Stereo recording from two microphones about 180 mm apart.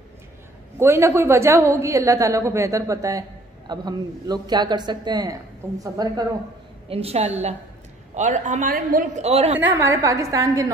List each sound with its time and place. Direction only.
0.7 s a woman's voice: 15° right (ahead or behind)
6.9 s a woman's voice: 35° right (ahead or behind)
9.6 s a woman's voice: 15° right (ahead or behind)